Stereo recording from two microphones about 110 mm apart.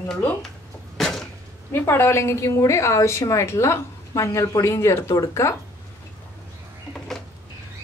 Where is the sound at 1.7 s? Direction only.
20° left (ahead or behind).